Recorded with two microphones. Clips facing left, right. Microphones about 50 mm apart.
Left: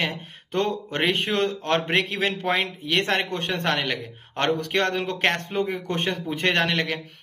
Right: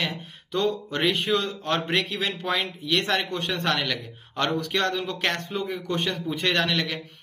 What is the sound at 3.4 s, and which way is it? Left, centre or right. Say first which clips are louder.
A man's voice: left 1 dB; left.